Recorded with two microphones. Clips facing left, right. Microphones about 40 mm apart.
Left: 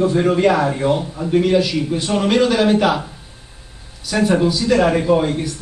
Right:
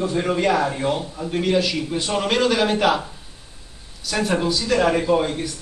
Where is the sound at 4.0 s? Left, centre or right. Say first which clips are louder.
Left 6 dB; centre.